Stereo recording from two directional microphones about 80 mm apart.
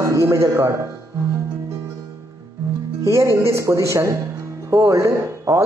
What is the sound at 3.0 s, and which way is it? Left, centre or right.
Speech, right.